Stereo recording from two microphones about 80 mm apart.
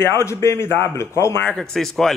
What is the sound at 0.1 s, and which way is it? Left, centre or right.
Speech, left.